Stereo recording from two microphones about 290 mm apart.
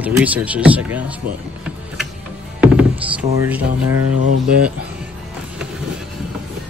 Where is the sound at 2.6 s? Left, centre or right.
Centre.